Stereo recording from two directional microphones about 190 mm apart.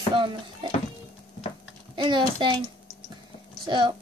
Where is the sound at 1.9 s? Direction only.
25° right (ahead or behind).